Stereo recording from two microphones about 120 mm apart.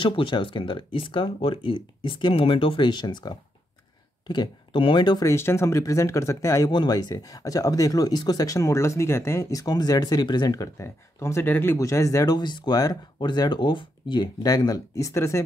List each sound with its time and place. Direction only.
0.0 s speech: 45° left (ahead or behind)
5.3 s speech: 20° left (ahead or behind)